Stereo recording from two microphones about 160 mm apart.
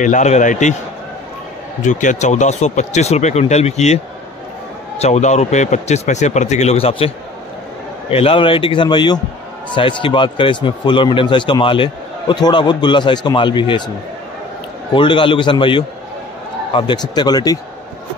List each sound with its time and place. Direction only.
0.0 s speech: 50° left (ahead or behind)
1.9 s speech: 50° left (ahead or behind)
8.1 s speech: 35° left (ahead or behind)
15.0 s speech: 30° left (ahead or behind)